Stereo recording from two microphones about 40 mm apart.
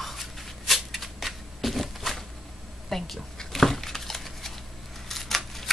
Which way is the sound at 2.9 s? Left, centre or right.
Centre.